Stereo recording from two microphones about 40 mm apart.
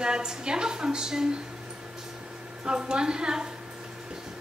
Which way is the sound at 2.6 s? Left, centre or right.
Right.